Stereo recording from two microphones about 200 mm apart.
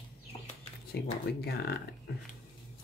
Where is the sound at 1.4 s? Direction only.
55° left (ahead or behind).